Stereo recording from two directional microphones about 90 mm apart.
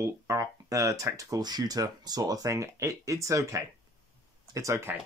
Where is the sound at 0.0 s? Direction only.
35° right (ahead or behind).